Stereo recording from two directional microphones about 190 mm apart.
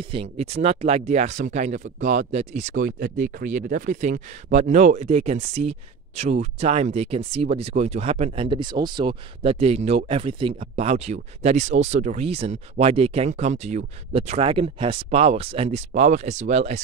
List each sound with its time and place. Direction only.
0.0 s speech: 30° right (ahead or behind)